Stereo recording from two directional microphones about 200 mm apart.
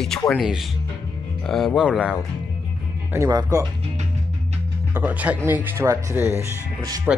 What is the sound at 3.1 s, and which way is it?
Speech, 15° right (ahead or behind).